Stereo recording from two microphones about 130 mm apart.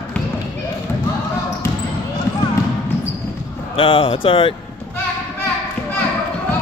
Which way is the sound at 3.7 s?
45° left (ahead or behind).